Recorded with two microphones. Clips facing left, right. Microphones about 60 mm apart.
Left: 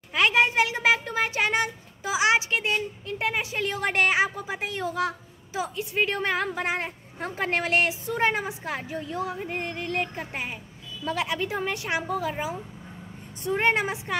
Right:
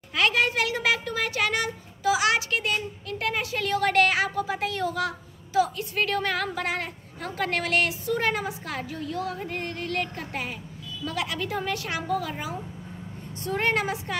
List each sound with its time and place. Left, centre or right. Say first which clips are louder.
0.1 s a child's voice: left 2 dB; left